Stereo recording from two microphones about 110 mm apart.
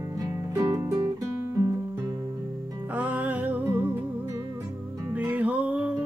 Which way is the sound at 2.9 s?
15° right (ahead or behind).